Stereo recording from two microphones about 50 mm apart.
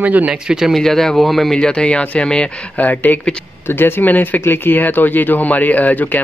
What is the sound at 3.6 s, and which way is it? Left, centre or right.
Speech, left.